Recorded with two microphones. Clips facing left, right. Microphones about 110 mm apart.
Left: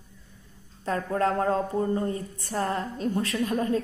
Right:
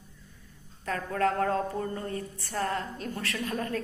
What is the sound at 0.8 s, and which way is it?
Speech, 25° left (ahead or behind).